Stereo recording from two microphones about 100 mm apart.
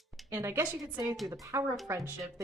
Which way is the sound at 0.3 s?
25° right (ahead or behind).